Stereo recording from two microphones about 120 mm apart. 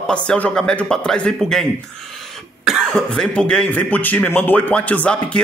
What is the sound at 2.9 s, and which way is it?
Speech, 10° left (ahead or behind).